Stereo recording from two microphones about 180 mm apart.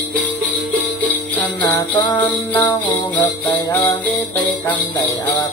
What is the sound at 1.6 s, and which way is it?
Jingle bell, 10° left (ahead or behind).